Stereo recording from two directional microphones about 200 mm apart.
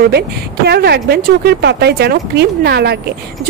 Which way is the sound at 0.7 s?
55° right (ahead or behind).